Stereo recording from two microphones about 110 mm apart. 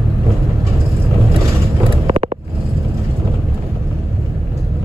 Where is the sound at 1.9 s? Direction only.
60° right (ahead or behind).